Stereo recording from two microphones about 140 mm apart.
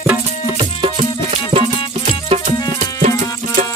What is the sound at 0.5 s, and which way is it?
Music, 40° right (ahead or behind).